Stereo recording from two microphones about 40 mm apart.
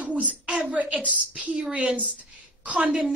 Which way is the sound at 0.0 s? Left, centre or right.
Right.